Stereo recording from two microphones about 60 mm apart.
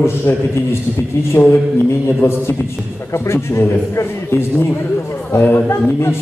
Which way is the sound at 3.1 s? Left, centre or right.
Left.